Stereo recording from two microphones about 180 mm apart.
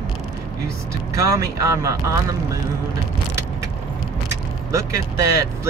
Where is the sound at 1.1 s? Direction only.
20° right (ahead or behind).